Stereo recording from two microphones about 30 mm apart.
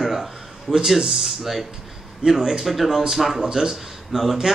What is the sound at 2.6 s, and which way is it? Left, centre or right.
Speech, centre.